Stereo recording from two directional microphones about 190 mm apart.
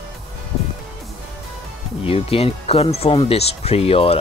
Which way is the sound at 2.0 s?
30° left (ahead or behind).